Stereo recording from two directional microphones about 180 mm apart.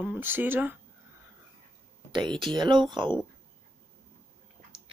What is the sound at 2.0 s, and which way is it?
Speech, 25° right (ahead or behind).